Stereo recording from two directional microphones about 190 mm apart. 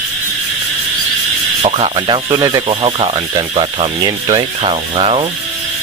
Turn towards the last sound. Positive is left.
turn(degrees=-30)  # may be behind; listen again after turning